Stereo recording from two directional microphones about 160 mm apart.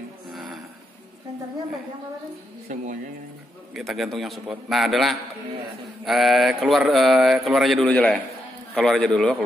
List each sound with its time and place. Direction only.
0.3 s music: centre (ahead or behind)
2.7 s speech: 55° right (ahead or behind)
3.7 s speech: centre (ahead or behind)